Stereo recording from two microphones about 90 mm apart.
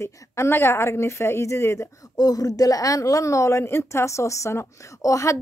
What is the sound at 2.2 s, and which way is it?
A woman's voice, 45° left (ahead or behind).